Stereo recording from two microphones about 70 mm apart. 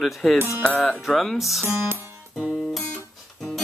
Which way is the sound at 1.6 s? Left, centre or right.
Right.